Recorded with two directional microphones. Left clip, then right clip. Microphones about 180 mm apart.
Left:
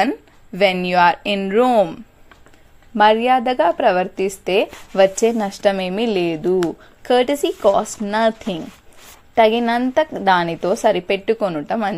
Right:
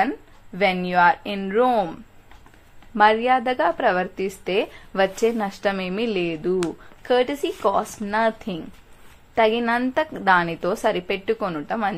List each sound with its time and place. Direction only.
0.6 s a woman's voice: 35° left (ahead or behind)